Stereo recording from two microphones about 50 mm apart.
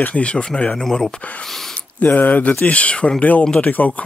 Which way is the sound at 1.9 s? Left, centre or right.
Left.